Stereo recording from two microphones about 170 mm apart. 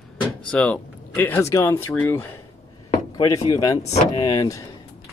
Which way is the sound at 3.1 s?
25° left (ahead or behind).